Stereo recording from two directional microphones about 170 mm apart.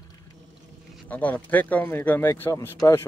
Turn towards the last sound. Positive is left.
turn(degrees=15)  # may be behind; listen again after turning